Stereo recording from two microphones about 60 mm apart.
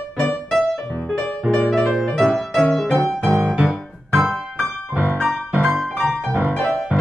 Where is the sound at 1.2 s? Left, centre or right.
Centre.